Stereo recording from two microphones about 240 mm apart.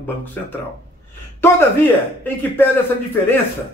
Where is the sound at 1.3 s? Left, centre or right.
Centre.